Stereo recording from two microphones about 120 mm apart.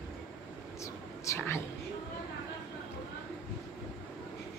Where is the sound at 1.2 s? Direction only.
25° left (ahead or behind).